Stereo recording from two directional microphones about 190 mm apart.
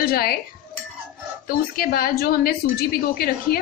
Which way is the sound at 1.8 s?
50° left (ahead or behind).